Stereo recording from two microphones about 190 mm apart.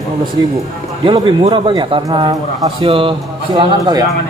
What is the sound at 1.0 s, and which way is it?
Speech, 25° right (ahead or behind).